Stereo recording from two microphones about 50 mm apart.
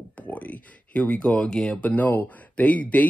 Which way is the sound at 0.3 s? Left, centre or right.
Left.